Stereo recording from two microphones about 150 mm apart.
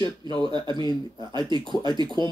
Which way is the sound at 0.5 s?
30° right (ahead or behind).